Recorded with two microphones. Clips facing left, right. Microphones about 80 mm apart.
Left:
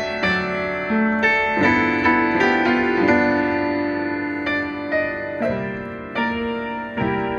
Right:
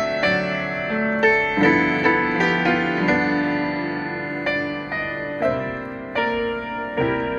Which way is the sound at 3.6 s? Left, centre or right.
Left.